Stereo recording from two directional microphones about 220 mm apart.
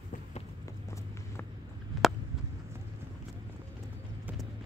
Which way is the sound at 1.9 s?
Centre (ahead or behind).